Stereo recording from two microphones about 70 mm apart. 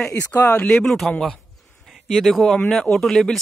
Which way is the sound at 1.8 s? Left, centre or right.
Centre.